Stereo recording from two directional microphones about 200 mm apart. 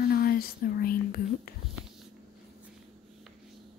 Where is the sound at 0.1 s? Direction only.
50° left (ahead or behind).